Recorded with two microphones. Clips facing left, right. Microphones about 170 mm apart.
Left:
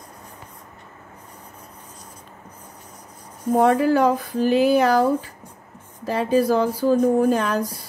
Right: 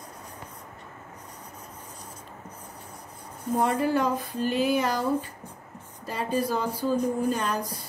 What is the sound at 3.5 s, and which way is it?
Speech, 90° left.